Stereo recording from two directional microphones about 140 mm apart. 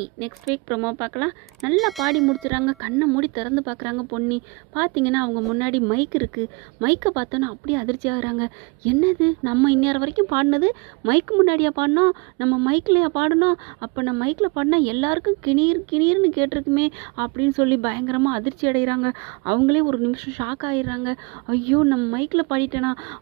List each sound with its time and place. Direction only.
0.7 s speech: 15° right (ahead or behind)
1.8 s speech: centre (ahead or behind)
2.5 s a woman's voice: 20° right (ahead or behind)